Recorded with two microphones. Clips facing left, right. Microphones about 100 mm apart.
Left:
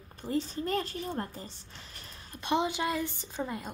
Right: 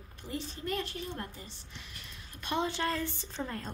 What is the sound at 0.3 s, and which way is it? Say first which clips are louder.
A woman's voice: left 6 dB; 35° left (ahead or behind).